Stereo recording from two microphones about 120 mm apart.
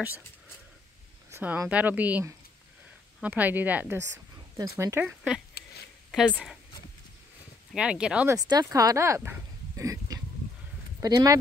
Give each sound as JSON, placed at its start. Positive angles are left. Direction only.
{"t": 1.3, "sound": "a sound", "side_deg": -15}
{"t": 1.7, "sound": "a woman's voice", "side_deg": -15}
{"t": 4.6, "sound": "speech", "side_deg": -25}
{"t": 5.0, "sound": "speech", "side_deg": -5}
{"t": 7.7, "sound": "a woman's voice", "side_deg": -10}
{"t": 8.3, "sound": "speech", "side_deg": -35}